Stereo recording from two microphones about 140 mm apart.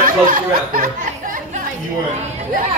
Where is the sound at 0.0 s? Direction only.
75° right (ahead or behind).